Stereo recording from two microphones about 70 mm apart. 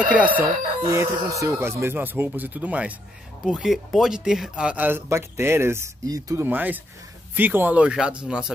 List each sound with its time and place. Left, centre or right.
0.0 s speech: centre
0.8 s speech: right
3.4 s speech: centre
4.7 s speech: right
6.0 s speech: right
6.4 s speech: right
7.9 s speech: centre